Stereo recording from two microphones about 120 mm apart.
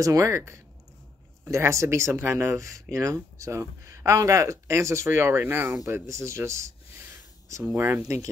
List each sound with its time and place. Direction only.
0.0 s speech: 25° right (ahead or behind)